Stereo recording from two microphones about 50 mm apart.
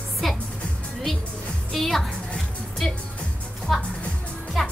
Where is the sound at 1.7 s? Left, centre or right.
Centre.